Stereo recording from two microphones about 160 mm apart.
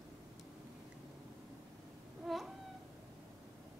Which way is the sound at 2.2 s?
Centre (ahead or behind).